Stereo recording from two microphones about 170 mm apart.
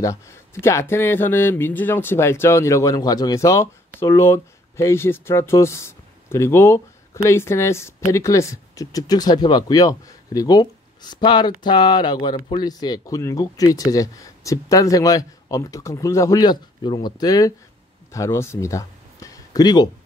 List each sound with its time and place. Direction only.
0.0 s speech: 15° left (ahead or behind)